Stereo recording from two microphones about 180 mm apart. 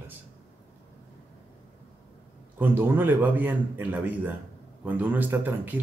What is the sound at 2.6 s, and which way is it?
A man's voice, 10° right (ahead or behind).